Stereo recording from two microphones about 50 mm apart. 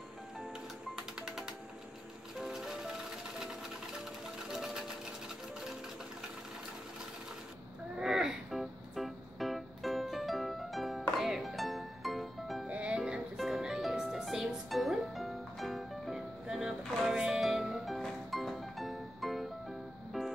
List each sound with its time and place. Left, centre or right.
0.9 s music: centre
4.0 s music: centre
8.0 s music: centre
12.6 s music: right
13.4 s music: centre